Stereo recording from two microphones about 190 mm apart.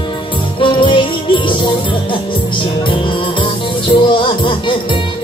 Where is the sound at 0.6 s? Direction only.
25° left (ahead or behind).